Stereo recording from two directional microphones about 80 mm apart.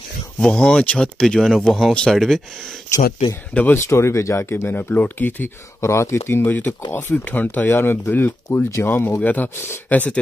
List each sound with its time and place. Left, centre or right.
0.4 s speech: centre
3.7 s speech: left
5.8 s speech: left; by 10.1 s centre